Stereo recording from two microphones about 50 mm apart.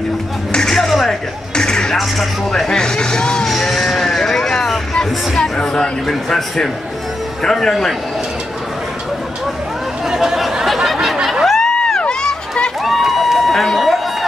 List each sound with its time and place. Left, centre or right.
0.5 s a sound: centre
1.5 s music: centre
2.0 s speech: centre
2.7 s speech: centre
3.4 s vehicle: centre
5.3 s speech: centre
10.0 s a sound: centre
12.0 s run: centre
12.8 s a sound: centre